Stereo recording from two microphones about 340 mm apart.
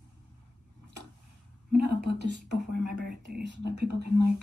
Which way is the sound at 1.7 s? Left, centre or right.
Right.